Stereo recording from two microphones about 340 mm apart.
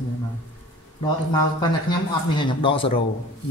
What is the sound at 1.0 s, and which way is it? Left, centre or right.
Speech, centre.